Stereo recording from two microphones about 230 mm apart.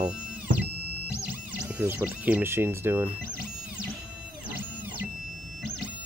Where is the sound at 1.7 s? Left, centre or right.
Centre.